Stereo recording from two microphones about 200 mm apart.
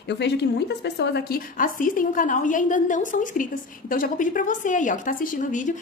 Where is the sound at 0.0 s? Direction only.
60° left (ahead or behind).